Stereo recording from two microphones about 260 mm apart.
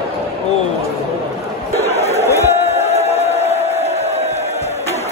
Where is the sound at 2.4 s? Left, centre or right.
Left.